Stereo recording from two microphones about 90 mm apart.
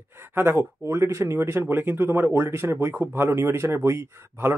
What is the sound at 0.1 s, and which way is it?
Speech, 25° right (ahead or behind).